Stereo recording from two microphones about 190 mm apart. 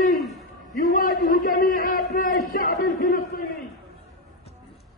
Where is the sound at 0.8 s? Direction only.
45° left (ahead or behind).